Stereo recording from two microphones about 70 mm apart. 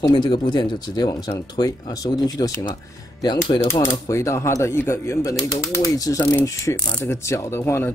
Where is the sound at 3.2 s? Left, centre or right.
Left.